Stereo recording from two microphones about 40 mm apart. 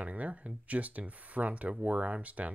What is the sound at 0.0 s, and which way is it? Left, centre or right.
Speech, right.